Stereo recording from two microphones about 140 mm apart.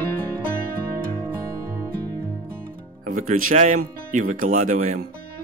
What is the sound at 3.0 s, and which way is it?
Speech, 75° right (ahead or behind).